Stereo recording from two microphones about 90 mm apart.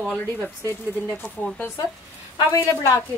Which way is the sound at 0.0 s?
Centre (ahead or behind).